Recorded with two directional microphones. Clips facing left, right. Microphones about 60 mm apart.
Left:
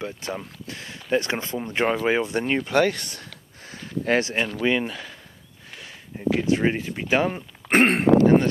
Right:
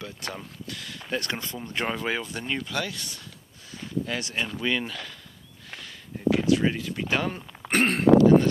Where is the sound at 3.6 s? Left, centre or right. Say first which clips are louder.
Left 5 dB; left.